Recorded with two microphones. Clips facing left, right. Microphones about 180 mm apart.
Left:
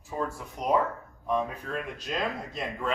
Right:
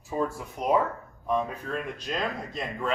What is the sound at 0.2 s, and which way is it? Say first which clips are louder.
A man's voice: right 3 dB; 5° right (ahead or behind).